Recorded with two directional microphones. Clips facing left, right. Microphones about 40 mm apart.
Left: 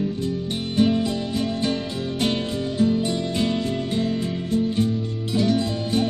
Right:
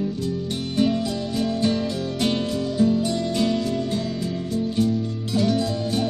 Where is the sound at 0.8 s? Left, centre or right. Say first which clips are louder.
Left 1 dB; left.